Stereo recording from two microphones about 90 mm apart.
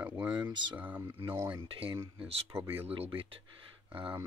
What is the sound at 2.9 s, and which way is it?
Speech, 90° right.